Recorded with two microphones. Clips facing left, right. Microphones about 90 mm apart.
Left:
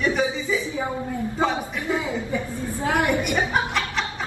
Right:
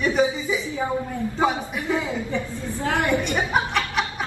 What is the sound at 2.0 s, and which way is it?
A woman's voice, 20° left (ahead or behind).